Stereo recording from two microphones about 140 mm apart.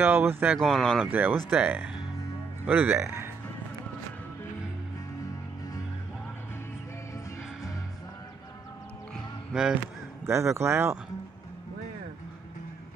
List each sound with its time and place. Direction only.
0.0 s speech: 15° right (ahead or behind)
0.6 s speech: centre (ahead or behind)
1.0 s speech: 15° right (ahead or behind)
9.1 s music: 5° right (ahead or behind)
10.2 s speech: 20° right (ahead or behind)